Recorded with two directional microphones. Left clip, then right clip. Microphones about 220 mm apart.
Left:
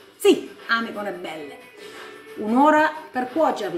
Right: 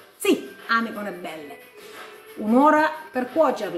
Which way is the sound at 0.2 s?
5° right (ahead or behind).